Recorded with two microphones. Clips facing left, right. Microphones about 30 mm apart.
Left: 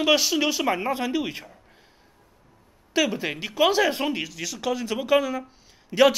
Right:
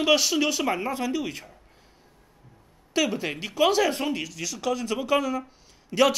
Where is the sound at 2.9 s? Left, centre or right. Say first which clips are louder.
Left 1 dB; centre.